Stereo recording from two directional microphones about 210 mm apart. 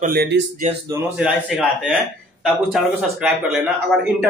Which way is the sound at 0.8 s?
10° right (ahead or behind).